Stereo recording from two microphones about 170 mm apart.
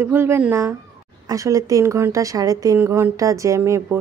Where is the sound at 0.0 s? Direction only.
15° right (ahead or behind).